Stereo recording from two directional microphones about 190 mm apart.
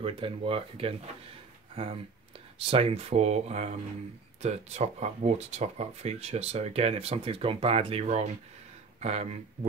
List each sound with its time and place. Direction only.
0.0 s speech: 30° right (ahead or behind)
2.6 s speech: 30° right (ahead or behind)